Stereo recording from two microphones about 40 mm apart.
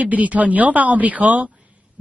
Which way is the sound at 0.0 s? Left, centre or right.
Right.